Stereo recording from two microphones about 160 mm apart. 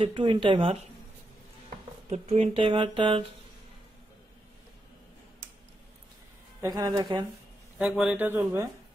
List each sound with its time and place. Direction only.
0.0 s speech: 30° right (ahead or behind)
2.0 s speech: 40° right (ahead or behind)
6.6 s speech: 25° right (ahead or behind)
7.8 s speech: 5° right (ahead or behind)